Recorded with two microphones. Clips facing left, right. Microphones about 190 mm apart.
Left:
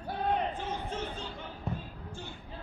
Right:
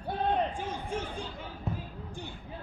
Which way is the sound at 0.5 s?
10° right (ahead or behind).